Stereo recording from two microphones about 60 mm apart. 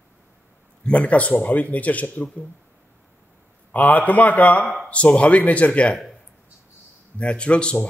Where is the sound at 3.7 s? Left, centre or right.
Left.